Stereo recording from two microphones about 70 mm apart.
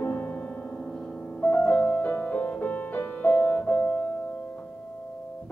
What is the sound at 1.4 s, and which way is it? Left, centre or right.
Music, centre.